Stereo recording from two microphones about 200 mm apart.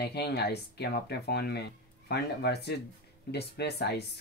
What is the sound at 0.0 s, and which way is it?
Speech, 55° left (ahead or behind).